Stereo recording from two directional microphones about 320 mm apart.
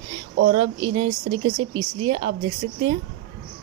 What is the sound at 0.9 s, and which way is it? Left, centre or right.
Speech, right.